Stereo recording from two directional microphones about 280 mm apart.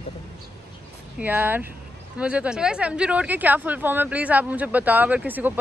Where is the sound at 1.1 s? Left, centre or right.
Centre.